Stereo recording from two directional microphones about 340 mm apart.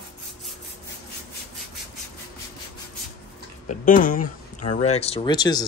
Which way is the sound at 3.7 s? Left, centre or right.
Left.